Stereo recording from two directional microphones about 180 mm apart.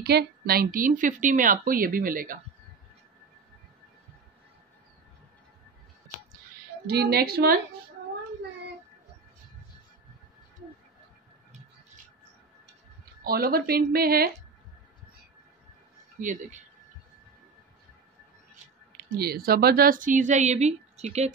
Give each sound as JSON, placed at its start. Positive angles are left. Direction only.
{"t": 0.0, "sound": "a woman's voice", "side_deg": -60}
{"t": 6.9, "sound": "speech", "side_deg": -60}
{"t": 13.2, "sound": "speech", "side_deg": -55}
{"t": 16.2, "sound": "a woman's voice", "side_deg": -45}
{"t": 19.0, "sound": "a woman's voice", "side_deg": -60}